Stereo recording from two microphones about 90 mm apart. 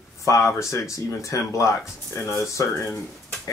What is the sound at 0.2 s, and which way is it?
Speech, 35° left (ahead or behind).